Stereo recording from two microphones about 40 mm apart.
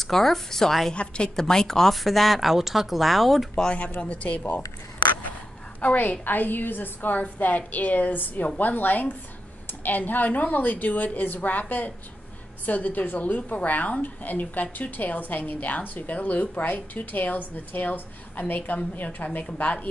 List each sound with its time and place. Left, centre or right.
0.0 s a woman's voice: centre
0.9 s a woman's voice: left
1.4 s a woman's voice: centre
2.0 s speech: centre
4.0 s speech: left
5.8 s a woman's voice: left
13.2 s a woman's voice: left
18.8 s speech: left
19.1 s a woman's voice: left